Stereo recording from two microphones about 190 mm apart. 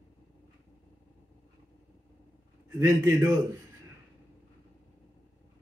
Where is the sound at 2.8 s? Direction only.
15° right (ahead or behind).